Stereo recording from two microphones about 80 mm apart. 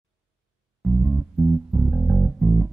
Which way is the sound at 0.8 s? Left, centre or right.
Centre.